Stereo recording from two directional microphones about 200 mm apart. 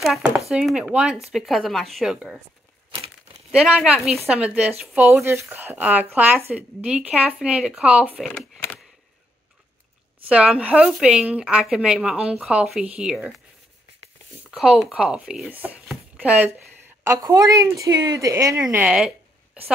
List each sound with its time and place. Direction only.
0.0 s speech: centre (ahead or behind)
3.5 s a woman's voice: 5° right (ahead or behind)
8.3 s typewriter: 5° left (ahead or behind)
10.2 s speech: 5° right (ahead or behind)
14.5 s a woman's voice: centre (ahead or behind)